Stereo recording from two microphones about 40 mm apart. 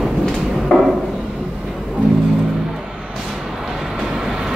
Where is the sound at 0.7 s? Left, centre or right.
Left.